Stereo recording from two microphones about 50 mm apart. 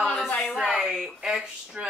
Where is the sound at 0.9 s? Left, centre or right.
Centre.